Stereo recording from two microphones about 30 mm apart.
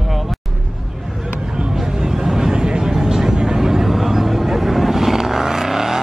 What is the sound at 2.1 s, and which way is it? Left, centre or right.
Vehicle, centre.